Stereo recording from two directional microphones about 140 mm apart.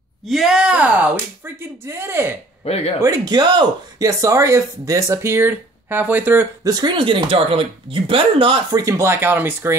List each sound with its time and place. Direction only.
0.3 s speech: 5° right (ahead or behind)
2.6 s speech: 45° left (ahead or behind)
3.0 s speech: 25° right (ahead or behind)
6.7 s speech: 30° right (ahead or behind)
8.7 s speech: 20° right (ahead or behind)